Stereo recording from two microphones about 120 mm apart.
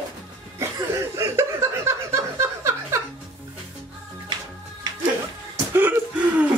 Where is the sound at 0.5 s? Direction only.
20° right (ahead or behind).